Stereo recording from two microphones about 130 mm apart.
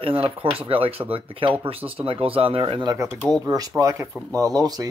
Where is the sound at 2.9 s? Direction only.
25° right (ahead or behind).